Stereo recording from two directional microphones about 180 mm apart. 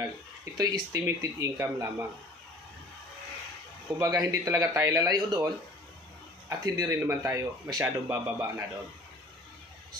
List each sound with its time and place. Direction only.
0.6 s speech: 20° right (ahead or behind)
4.0 s speech: 20° right (ahead or behind)
6.6 s speech: 20° right (ahead or behind)